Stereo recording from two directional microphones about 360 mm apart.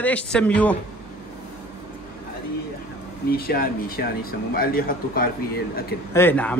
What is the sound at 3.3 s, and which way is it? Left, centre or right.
Speech, left.